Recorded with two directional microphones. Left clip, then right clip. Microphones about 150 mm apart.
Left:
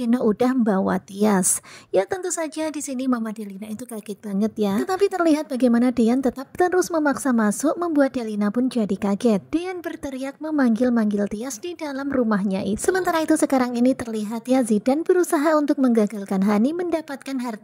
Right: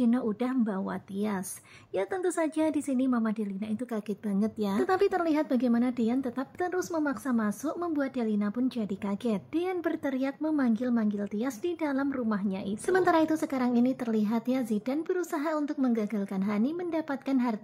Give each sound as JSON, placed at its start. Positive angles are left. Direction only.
{"t": 0.0, "sound": "a woman's voice", "side_deg": 50}
{"t": 4.3, "sound": "a woman's voice", "side_deg": 35}